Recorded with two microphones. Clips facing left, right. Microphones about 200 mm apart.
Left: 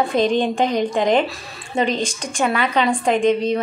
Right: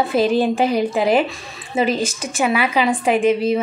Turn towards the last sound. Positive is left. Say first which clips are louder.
# right 1 dB
turn(degrees=-5)  # may be behind; listen again after turning